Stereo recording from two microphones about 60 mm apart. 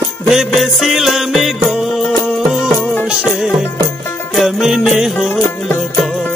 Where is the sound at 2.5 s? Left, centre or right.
Centre.